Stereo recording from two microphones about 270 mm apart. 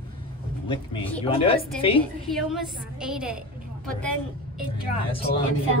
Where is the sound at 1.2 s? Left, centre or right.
Centre.